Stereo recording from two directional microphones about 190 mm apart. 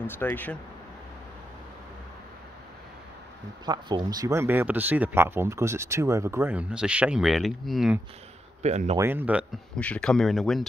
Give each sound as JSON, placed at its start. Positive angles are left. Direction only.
{"t": 0.0, "sound": "speech", "side_deg": 10}
{"t": 3.6, "sound": "speech", "side_deg": -20}
{"t": 8.6, "sound": "speech", "side_deg": -35}
{"t": 8.9, "sound": "speech", "side_deg": -10}
{"t": 9.8, "sound": "speech", "side_deg": 5}